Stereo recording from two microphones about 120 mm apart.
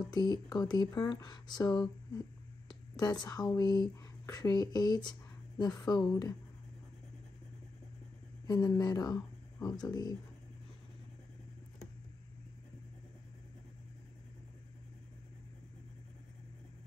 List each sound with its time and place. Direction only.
0.1 s speech: 35° left (ahead or behind)
8.5 s speech: 35° left (ahead or behind)